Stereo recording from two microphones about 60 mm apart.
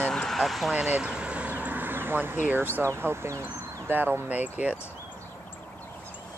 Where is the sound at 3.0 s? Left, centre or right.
Right.